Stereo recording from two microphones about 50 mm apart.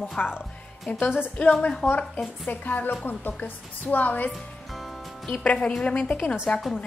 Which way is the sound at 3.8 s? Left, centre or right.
Left.